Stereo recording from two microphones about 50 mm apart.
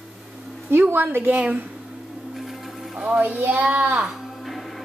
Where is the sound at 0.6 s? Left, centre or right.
Right.